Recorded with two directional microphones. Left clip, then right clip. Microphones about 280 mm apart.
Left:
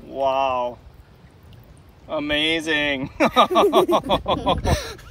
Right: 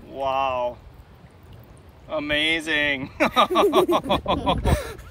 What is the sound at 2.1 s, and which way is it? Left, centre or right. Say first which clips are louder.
Speech: left 1 dB; centre.